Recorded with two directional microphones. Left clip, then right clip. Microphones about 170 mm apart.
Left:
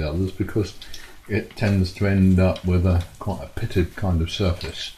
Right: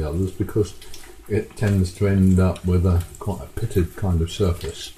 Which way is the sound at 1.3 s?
5° left (ahead or behind).